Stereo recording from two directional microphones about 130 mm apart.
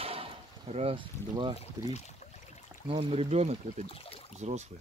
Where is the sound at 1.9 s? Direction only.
60° left (ahead or behind).